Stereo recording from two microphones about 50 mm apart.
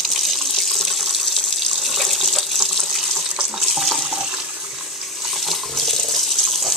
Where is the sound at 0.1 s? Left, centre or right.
Centre.